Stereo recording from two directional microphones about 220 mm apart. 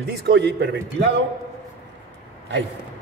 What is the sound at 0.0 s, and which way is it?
Speech, 50° right (ahead or behind).